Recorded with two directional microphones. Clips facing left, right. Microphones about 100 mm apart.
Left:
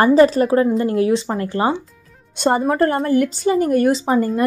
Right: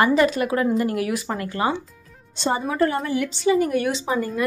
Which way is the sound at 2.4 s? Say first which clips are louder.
Left 5 dB; 50° left (ahead or behind).